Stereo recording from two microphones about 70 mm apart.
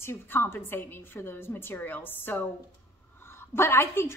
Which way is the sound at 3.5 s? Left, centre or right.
Left.